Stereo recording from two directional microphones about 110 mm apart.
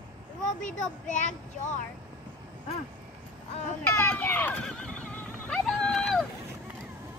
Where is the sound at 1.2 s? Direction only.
90° left.